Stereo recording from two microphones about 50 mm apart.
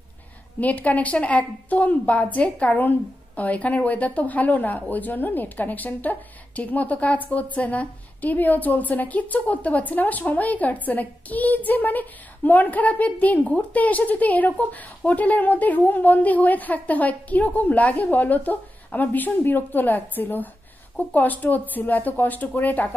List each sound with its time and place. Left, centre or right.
0.6 s a woman's voice: left